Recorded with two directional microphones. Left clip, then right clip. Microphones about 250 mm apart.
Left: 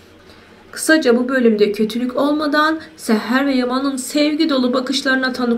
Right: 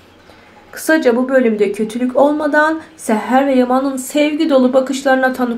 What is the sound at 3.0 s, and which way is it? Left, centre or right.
Speech, centre.